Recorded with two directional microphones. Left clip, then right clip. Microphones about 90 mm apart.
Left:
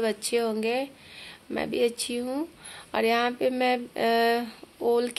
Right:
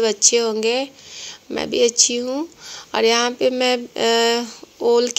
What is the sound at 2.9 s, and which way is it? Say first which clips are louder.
A woman's voice: right 7 dB; 35° right (ahead or behind).